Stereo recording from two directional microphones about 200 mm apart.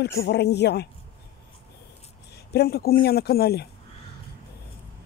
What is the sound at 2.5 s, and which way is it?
Speech, 50° left (ahead or behind).